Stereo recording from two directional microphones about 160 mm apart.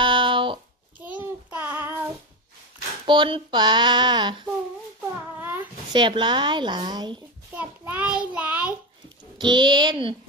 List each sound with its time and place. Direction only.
0.0 s a sound: 30° right (ahead or behind)
0.9 s child singing: 10° right (ahead or behind)
3.1 s speech: 30° right (ahead or behind)
5.9 s speech: 30° right (ahead or behind)
7.5 s child singing: 10° right (ahead or behind)
9.4 s speech: 30° right (ahead or behind)